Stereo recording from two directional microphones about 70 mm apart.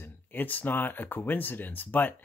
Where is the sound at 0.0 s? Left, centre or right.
Left.